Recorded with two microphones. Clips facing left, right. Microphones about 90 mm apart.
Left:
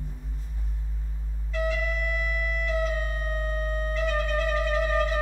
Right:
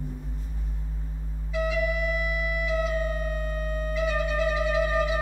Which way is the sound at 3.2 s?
45° left (ahead or behind).